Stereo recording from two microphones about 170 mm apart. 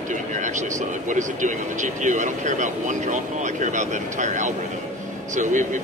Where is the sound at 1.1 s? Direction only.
45° right (ahead or behind).